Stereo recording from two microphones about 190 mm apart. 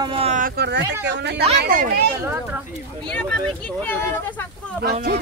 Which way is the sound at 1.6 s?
50° right (ahead or behind).